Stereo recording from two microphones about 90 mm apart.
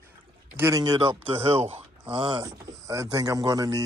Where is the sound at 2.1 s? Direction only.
80° right.